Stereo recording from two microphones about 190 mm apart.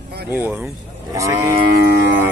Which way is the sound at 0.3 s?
10° right (ahead or behind).